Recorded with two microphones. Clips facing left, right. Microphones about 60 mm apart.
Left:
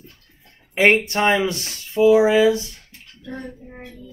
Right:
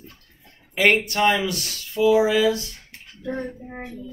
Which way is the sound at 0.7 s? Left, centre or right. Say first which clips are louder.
Left 3 dB; left.